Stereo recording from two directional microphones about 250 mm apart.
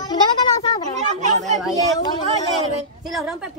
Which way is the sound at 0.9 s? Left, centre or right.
Right.